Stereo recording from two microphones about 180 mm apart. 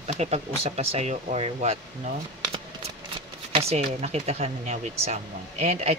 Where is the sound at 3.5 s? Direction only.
35° right (ahead or behind).